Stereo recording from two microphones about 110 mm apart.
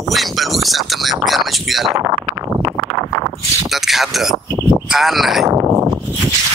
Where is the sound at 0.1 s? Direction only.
Centre (ahead or behind).